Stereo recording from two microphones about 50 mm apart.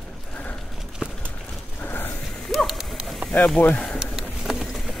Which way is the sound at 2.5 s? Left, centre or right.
Centre.